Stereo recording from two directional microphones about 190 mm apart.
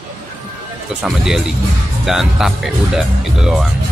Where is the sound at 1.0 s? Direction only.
5° right (ahead or behind).